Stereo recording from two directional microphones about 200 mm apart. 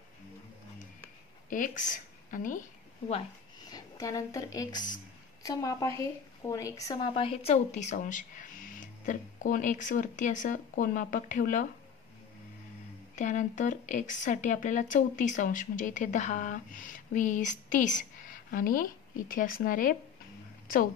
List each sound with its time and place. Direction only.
1.9 s a woman's voice: 40° left (ahead or behind)
3.7 s a woman's voice: 15° left (ahead or behind); by 11.6 s 40° left (ahead or behind)
13.1 s a woman's voice: 40° left (ahead or behind)